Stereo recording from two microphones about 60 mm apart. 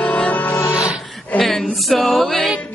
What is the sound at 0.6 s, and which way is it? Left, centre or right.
Music, left.